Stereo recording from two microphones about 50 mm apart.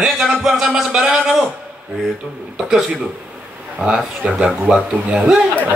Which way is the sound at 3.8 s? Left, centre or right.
Centre.